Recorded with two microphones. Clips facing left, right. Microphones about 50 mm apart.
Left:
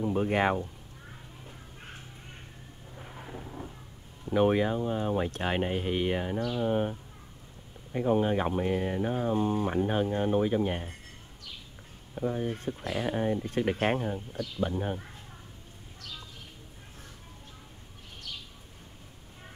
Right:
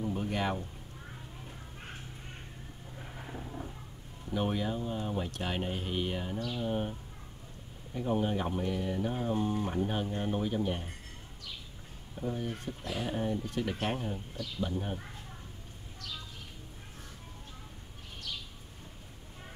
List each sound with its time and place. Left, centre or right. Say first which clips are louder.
0.0 s speech: left 6 dB; left
4.3 s speech: left 8 dB; left
8.1 s speech: left 5 dB; left
9.1 s speech: left 6 dB; left
12.2 s speech: left 5 dB; left